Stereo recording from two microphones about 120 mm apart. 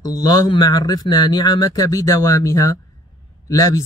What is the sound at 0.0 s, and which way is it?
Speech, 30° left (ahead or behind).